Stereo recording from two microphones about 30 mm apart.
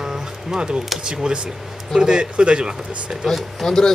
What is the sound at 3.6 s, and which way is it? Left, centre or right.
Speech, centre.